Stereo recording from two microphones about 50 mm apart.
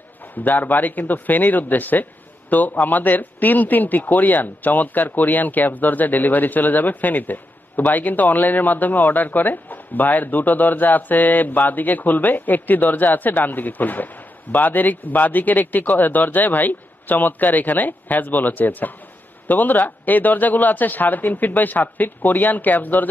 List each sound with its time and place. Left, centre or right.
0.4 s speech: left